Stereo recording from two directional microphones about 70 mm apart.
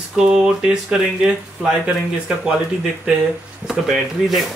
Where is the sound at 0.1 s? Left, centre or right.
Centre.